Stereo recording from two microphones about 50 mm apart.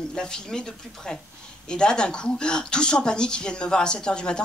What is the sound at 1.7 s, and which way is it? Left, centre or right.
Speech, centre.